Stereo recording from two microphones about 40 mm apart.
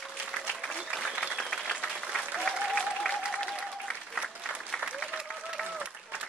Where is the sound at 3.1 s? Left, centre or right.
Left.